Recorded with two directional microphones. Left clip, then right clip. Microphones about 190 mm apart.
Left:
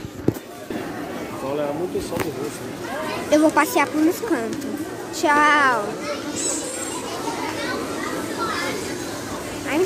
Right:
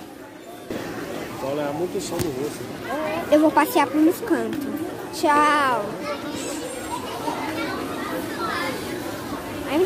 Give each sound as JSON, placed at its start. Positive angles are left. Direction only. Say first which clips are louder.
{"t": 3.3, "sound": "a woman's voice", "louder": "left 1 dB", "side_deg": -10}